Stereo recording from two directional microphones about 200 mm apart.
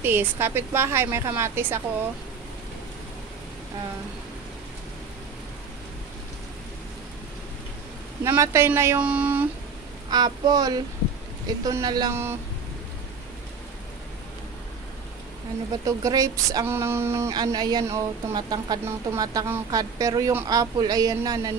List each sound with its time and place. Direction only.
0.0 s speech: 10° right (ahead or behind)
8.2 s speech: 15° right (ahead or behind)
10.0 s speech: 20° right (ahead or behind)
15.8 s speech: 15° right (ahead or behind)